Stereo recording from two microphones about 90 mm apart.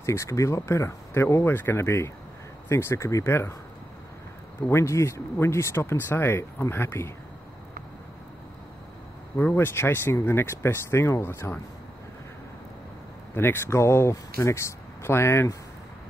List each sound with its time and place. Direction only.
0.0 s speech: 30° left (ahead or behind)
4.6 s speech: 30° left (ahead or behind)
9.4 s speech: 25° left (ahead or behind)
13.3 s speech: 25° left (ahead or behind)